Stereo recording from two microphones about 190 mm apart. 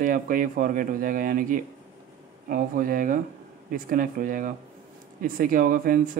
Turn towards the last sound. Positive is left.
turn(degrees=-45)  # may be behind; listen again after turning